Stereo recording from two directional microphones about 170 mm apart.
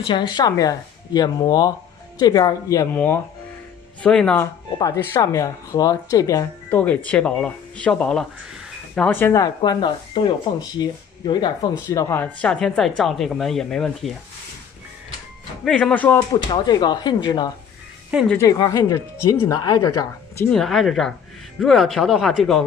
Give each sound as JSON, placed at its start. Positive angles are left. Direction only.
{"t": 0.0, "sound": "speech", "side_deg": 30}
{"t": 4.0, "sound": "speech", "side_deg": 5}
{"t": 4.7, "sound": "speech", "side_deg": 20}
{"t": 9.6, "sound": "speech", "side_deg": 30}
{"t": 15.6, "sound": "speech", "side_deg": 5}
{"t": 16.3, "sound": "speech", "side_deg": 25}
{"t": 20.4, "sound": "speech", "side_deg": 0}